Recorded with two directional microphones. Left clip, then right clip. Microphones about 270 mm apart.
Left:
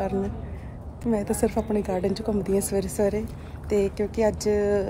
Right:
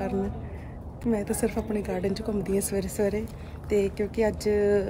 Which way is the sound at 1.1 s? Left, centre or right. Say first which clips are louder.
Left 4 dB; centre.